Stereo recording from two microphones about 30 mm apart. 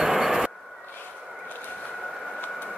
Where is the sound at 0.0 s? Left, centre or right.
Centre.